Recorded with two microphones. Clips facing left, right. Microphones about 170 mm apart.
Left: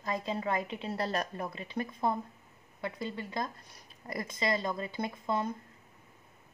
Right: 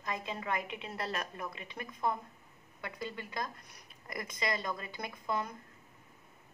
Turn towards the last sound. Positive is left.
turn(degrees=30)  # may be behind; listen again after turning